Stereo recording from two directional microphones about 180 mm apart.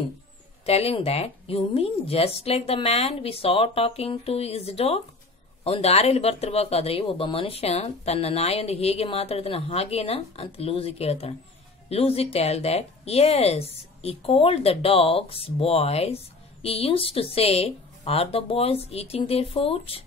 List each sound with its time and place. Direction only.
0.7 s speech: 35° left (ahead or behind)